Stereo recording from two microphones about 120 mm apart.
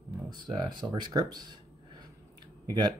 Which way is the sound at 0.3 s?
40° right (ahead or behind).